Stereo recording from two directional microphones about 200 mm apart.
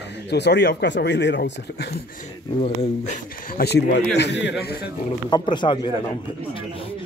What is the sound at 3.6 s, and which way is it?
Speech, 55° left (ahead or behind).